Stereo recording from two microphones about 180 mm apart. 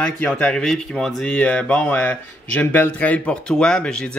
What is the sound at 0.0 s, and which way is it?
Speech, 10° left (ahead or behind).